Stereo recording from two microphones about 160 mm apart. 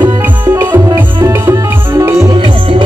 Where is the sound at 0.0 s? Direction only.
20° right (ahead or behind).